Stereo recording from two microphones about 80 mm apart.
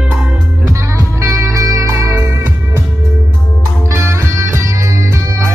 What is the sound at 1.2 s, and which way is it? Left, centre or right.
Music, right.